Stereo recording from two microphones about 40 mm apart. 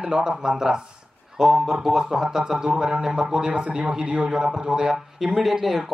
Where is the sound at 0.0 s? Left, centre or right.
Right.